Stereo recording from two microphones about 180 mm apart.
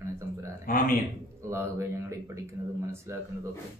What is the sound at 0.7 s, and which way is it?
Speech, 50° left (ahead or behind).